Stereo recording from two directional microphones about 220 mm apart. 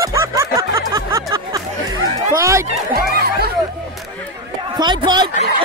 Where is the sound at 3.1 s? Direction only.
45° right (ahead or behind).